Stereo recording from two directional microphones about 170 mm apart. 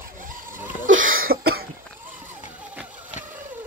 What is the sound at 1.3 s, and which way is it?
Cough, 70° right (ahead or behind).